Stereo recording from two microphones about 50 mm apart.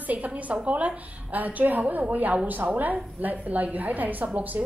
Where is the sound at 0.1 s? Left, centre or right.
Right.